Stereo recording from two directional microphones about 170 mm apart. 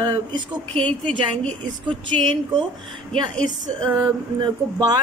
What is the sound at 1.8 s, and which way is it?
Speech, 30° right (ahead or behind).